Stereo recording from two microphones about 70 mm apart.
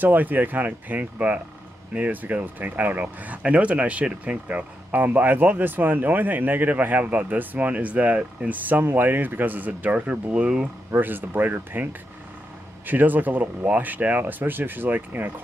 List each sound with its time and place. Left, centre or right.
0.0 s speech: right
8.6 s speech: right; by 10.7 s centre
10.9 s speech: right